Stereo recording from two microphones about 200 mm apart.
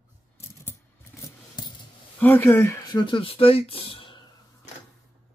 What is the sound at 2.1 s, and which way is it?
Speech, 10° left (ahead or behind).